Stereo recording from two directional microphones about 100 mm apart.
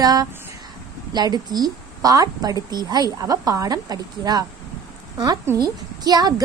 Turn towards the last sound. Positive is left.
turn(degrees=-40)  # may be behind; listen again after turning